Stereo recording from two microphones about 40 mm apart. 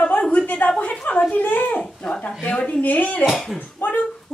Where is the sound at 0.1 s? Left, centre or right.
Left.